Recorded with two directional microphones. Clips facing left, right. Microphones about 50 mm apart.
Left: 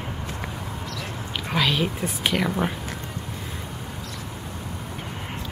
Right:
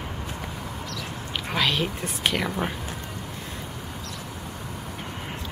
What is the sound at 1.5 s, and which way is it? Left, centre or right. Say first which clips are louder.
A woman's voice: left 2 dB; centre.